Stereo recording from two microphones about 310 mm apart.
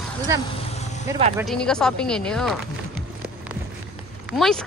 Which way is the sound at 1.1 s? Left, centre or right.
Centre.